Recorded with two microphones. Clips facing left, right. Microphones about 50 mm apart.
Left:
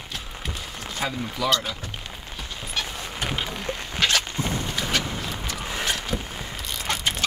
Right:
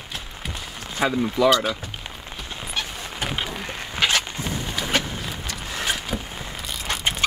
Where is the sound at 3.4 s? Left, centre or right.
Centre.